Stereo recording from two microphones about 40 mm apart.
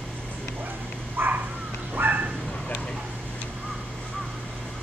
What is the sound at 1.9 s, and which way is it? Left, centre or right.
Dog, right.